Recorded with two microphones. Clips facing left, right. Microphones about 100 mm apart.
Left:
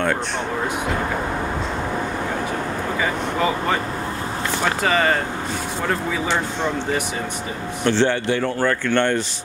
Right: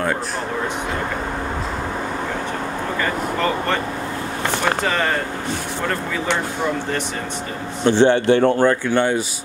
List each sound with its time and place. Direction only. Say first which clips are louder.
4.8 s speech: left 2 dB; centre (ahead or behind)
7.8 s speech: right 4 dB; 20° right (ahead or behind)
8.3 s speech: right 7 dB; 35° right (ahead or behind)
8.5 s speech: right 3 dB; 15° right (ahead or behind)